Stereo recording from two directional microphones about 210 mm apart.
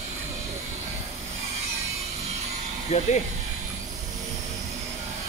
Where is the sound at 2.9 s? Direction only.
30° left (ahead or behind).